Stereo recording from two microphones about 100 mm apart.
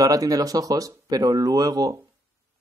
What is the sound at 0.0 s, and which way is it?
Speech, 35° right (ahead or behind).